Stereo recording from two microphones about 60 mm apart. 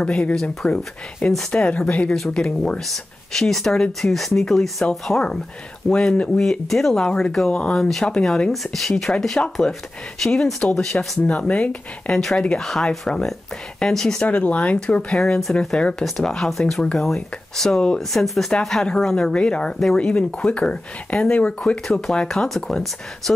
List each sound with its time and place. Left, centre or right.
0.0 s speech: centre
7.1 s speech: centre
11.2 s speech: left
12.6 s speech: centre
14.2 s speech: left
16.0 s speech: centre